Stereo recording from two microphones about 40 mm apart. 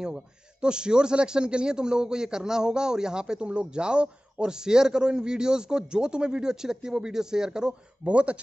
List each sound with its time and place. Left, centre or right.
0.0 s a man's voice: centre
8.0 s speech: right